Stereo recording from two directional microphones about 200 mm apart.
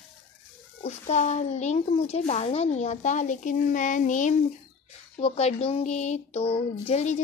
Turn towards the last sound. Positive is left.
turn(degrees=35)  # may be behind; listen again after turning